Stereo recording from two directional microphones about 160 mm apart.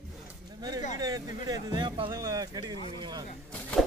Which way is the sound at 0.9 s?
25° right (ahead or behind).